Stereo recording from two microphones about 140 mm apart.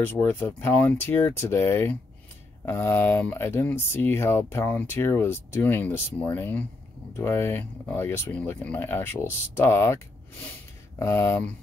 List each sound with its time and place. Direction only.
0.0 s speech: 15° left (ahead or behind)